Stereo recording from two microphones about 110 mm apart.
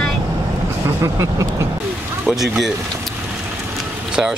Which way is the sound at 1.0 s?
30° right (ahead or behind).